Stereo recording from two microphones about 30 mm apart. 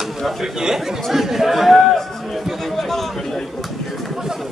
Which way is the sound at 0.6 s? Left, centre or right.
Centre.